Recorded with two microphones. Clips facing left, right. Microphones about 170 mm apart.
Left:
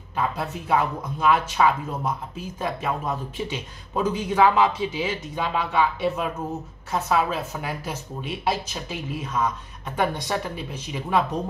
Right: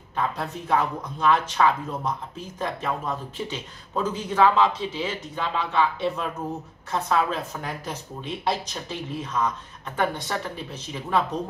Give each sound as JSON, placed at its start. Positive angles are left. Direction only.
{"t": 0.1, "sound": "speech", "side_deg": 10}